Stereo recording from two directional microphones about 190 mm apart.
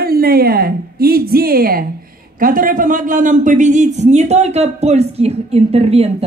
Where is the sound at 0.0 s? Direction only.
55° right (ahead or behind).